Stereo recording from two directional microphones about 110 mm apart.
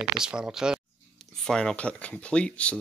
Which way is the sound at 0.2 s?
5° right (ahead or behind).